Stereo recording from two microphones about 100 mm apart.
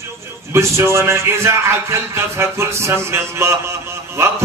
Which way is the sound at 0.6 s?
25° right (ahead or behind).